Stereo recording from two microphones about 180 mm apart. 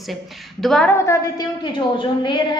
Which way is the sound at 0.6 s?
Centre (ahead or behind).